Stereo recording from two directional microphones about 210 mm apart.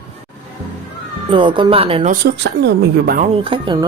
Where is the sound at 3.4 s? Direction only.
25° right (ahead or behind).